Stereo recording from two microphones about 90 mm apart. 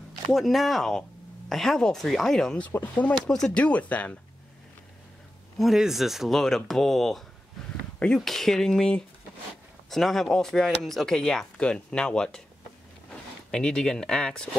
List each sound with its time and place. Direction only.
0.3 s speech: centre (ahead or behind)
2.7 s speech: 20° left (ahead or behind)
3.3 s speech: 5° left (ahead or behind)
5.6 s speech: 5° right (ahead or behind)